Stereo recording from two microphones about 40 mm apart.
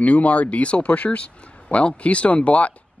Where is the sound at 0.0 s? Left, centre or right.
Left.